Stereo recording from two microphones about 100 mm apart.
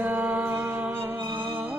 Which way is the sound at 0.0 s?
15° right (ahead or behind).